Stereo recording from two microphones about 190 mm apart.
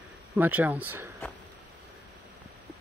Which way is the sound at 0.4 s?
10° right (ahead or behind).